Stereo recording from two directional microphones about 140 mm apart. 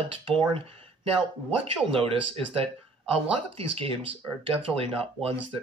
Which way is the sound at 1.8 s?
40° right (ahead or behind).